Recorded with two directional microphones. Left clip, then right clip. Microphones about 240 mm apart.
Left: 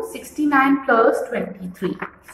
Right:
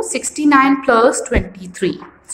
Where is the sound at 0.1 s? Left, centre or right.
Right.